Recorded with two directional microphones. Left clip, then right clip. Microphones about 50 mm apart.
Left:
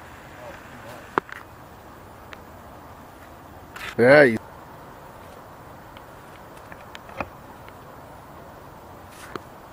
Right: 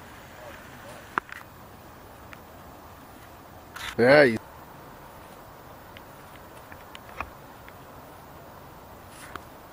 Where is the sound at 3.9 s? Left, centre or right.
Centre.